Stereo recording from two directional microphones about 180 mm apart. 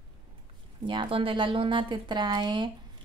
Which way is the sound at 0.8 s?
25° right (ahead or behind).